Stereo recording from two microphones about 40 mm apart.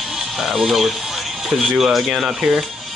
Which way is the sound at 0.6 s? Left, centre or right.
Centre.